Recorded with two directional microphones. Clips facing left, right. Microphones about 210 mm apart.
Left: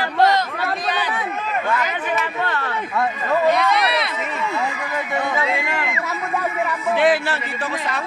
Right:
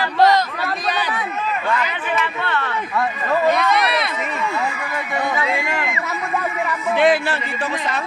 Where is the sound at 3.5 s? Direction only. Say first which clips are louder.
Even; 50° right (ahead or behind).